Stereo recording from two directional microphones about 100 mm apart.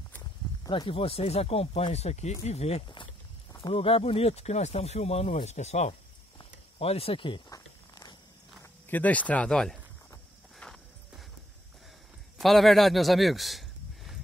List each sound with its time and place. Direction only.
0.7 s speech: 55° left (ahead or behind); by 2.8 s 90° left
3.7 s speech: 70° left (ahead or behind); by 5.9 s 90° left
6.8 s speech: 75° left (ahead or behind); by 7.4 s 55° left (ahead or behind)
7.4 s a sound: 40° left (ahead or behind)
8.8 s speech: 15° left (ahead or behind)
10.6 s clip-clop: 5° left (ahead or behind)
12.4 s speech: centre (ahead or behind)